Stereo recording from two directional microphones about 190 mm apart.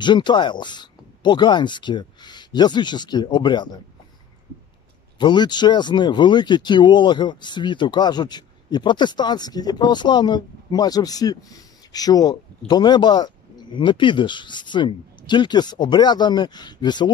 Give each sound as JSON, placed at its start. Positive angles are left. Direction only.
{"t": 0.0, "sound": "speech", "side_deg": 25}
{"t": 5.2, "sound": "speech", "side_deg": 25}